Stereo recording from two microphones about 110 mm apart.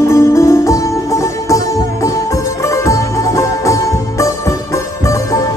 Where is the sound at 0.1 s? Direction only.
25° left (ahead or behind).